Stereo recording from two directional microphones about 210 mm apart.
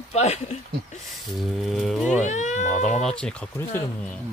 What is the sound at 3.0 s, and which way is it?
Speech, 5° left (ahead or behind).